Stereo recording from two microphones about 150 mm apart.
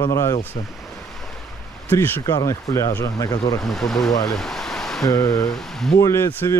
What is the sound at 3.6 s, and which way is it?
Speech, centre (ahead or behind).